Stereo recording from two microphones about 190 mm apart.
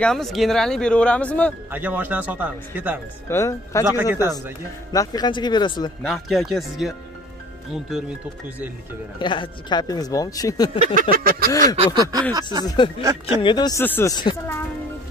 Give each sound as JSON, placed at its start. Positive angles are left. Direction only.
{"t": 0.0, "sound": "speech", "side_deg": 0}
{"t": 1.7, "sound": "speech", "side_deg": -10}
{"t": 3.3, "sound": "speech", "side_deg": 15}
{"t": 3.9, "sound": "speech", "side_deg": -10}
{"t": 4.9, "sound": "speech", "side_deg": 20}
{"t": 6.0, "sound": "speech", "side_deg": 0}
{"t": 9.2, "sound": "speech", "side_deg": 25}
{"t": 11.0, "sound": "a sound", "side_deg": -50}
{"t": 11.7, "sound": "a sound", "side_deg": -30}
{"t": 12.0, "sound": "speech", "side_deg": -20}
{"t": 12.6, "sound": "speech", "side_deg": 25}
{"t": 13.0, "sound": "speech", "side_deg": -15}
{"t": 13.4, "sound": "a woman's voice", "side_deg": 25}